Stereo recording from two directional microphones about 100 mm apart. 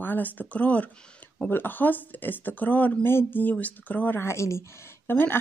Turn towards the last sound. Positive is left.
turn(degrees=20)  # may be behind; listen again after turning